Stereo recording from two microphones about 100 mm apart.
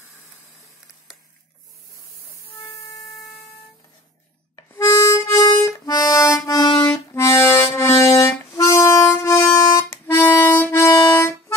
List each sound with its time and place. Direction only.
4.7 s harmonica: 30° left (ahead or behind)
5.9 s music: 35° left (ahead or behind)
6.9 s music: 30° left (ahead or behind)
7.7 s a sound: 30° left (ahead or behind)
8.5 s harmonica: 25° left (ahead or behind)